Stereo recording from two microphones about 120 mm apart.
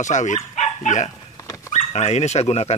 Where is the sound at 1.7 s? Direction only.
70° left (ahead or behind).